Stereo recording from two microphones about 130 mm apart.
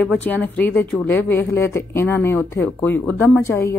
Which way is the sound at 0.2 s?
15° left (ahead or behind).